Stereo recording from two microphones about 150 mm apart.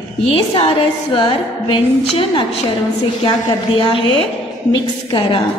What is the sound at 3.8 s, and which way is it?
A woman's voice, 35° left (ahead or behind).